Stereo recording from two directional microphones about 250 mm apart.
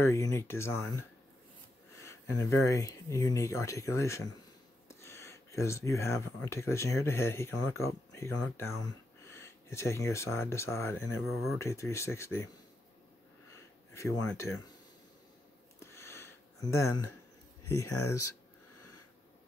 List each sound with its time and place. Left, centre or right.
0.0 s speech: centre
2.0 s speech: centre
11.5 s speech: centre
13.9 s speech: centre
15.8 s a sound: centre
17.6 s speech: centre
17.9 s speech: left